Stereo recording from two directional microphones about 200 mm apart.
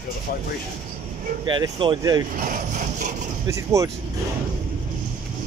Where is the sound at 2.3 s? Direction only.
40° right (ahead or behind).